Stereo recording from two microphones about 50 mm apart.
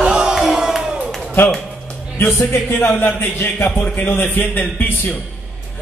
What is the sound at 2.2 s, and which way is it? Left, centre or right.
A man's voice, left.